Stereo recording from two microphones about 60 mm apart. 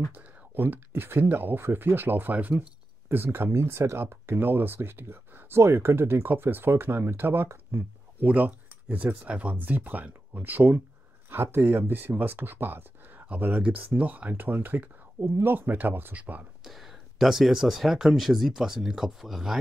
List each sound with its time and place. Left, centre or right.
0.1 s speech: right
3.1 s speech: right
8.3 s speech: right
16.6 s speech: centre